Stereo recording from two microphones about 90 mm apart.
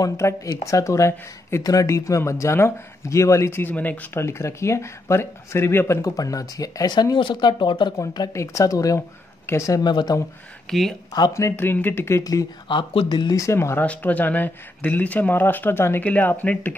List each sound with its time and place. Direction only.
0.0 s speech: 30° left (ahead or behind)
4.2 s speech: 30° left (ahead or behind)
6.0 s speech: 40° left (ahead or behind); by 7.9 s 60° left (ahead or behind)
8.3 s speech: 35° left (ahead or behind)
9.8 s speech: 50° left (ahead or behind)
10.7 s speech: 5° left (ahead or behind)
11.5 s speech: 20° left (ahead or behind)
12.2 s speech: 45° left (ahead or behind)
12.6 s speech: 75° left (ahead or behind)
13.3 s speech: 35° left (ahead or behind)
13.8 s speech: 20° left (ahead or behind)